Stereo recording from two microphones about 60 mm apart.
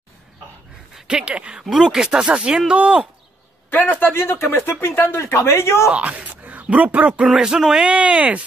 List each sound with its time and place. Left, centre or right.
0.9 s speech: centre
3.7 s speech: left
5.9 s speech: right
7.2 s speech: centre